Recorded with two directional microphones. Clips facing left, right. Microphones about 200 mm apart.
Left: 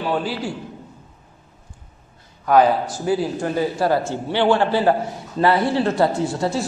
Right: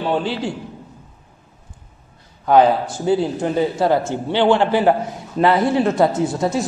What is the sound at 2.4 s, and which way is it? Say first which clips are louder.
A man's voice: right 2 dB; 25° right (ahead or behind).